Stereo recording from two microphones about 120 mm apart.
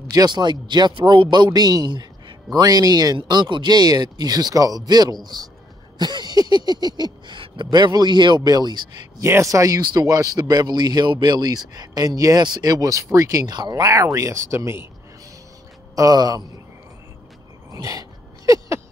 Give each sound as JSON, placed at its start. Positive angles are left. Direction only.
{"t": 0.0, "sound": "speech", "side_deg": -30}
{"t": 9.2, "sound": "speech", "side_deg": -25}
{"t": 16.0, "sound": "speech", "side_deg": -30}
{"t": 17.6, "sound": "a sound", "side_deg": -30}